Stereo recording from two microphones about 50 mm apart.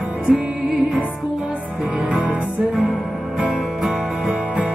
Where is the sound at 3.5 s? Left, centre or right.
Centre.